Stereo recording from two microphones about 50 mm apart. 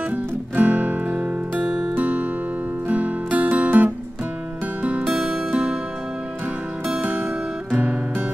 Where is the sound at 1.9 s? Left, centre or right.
Right.